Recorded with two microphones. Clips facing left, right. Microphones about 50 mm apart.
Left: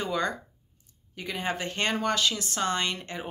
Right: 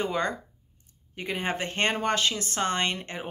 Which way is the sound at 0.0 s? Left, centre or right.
Right.